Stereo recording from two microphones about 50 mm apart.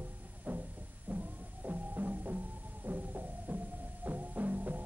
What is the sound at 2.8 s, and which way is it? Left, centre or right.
Heart murmur, right.